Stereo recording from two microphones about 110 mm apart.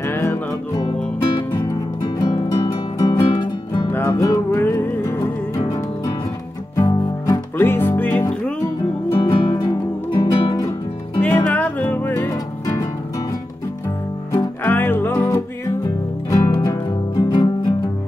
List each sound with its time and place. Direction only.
0.0 s music: 20° left (ahead or behind)
2.1 s music: 40° left (ahead or behind)
3.9 s music: 20° left (ahead or behind)
6.8 s music: 25° left (ahead or behind)
9.1 s music: 50° left (ahead or behind)
11.1 s music: 15° left (ahead or behind)
12.3 s music: 30° left (ahead or behind)
14.6 s music: 20° left (ahead or behind)
17.2 s music: 45° left (ahead or behind)